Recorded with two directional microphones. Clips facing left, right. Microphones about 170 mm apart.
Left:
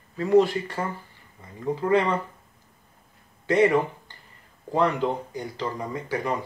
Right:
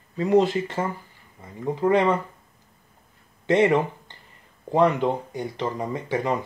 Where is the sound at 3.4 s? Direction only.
25° right (ahead or behind).